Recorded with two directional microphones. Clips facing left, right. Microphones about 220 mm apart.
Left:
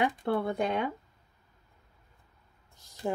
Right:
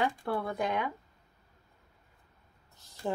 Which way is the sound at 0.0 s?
20° left (ahead or behind).